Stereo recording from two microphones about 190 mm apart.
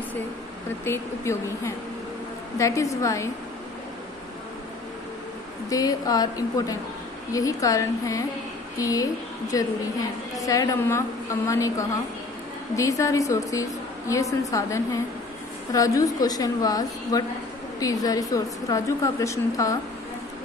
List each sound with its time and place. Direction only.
0.8 s a woman's voice: 15° left (ahead or behind)
5.7 s a woman's voice: 20° left (ahead or behind)
12.7 s a woman's voice: 15° left (ahead or behind)